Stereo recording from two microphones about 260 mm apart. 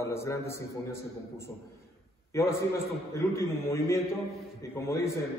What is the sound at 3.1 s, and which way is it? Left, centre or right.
A man's voice, centre.